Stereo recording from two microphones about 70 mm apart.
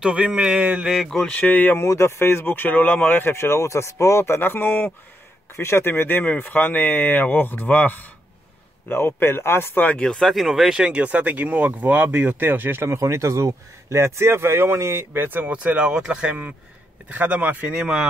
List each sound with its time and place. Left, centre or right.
0.0 s a sound: centre
0.9 s speech: centre
1.3 s speech: left
1.8 s speech: left
9.9 s speech: centre
10.8 s speech: centre
12.9 s speech: right